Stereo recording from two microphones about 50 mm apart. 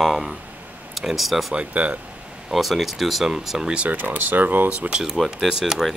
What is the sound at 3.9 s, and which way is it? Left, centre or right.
Speech, right.